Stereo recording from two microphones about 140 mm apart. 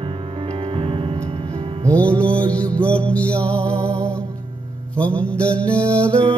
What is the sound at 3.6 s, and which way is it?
Music, 20° right (ahead or behind).